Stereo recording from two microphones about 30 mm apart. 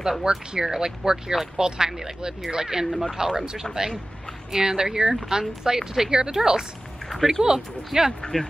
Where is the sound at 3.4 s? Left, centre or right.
Centre.